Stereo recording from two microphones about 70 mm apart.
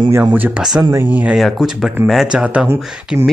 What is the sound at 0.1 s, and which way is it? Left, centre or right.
Speech, right.